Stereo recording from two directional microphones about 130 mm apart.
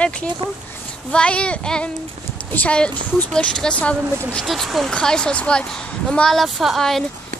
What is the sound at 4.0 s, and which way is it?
Speech, 20° right (ahead or behind).